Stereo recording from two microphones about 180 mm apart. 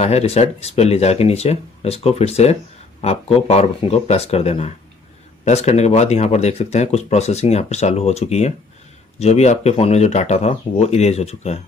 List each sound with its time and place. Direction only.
0.0 s speech: 35° left (ahead or behind)